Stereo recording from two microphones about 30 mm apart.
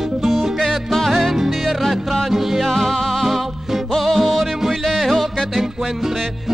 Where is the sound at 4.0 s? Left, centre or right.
Centre.